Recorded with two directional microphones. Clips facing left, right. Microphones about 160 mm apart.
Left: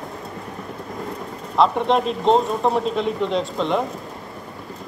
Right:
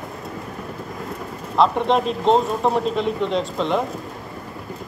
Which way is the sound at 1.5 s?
Centre (ahead or behind).